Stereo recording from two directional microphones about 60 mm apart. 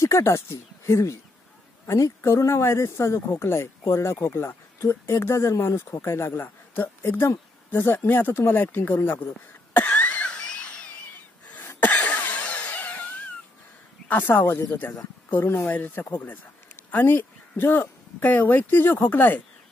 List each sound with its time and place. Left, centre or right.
0.0 s speech: left
4.8 s speech: left
5.2 s speech: left
9.8 s cough: left
10.4 s a sound: centre
11.9 s cough: left
14.0 s a man's voice: left